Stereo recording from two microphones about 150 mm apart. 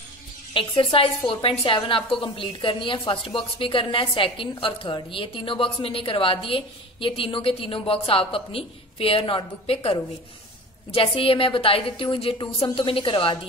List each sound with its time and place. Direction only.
0.6 s a woman's voice: 35° left (ahead or behind)
10.9 s a woman's voice: 35° left (ahead or behind)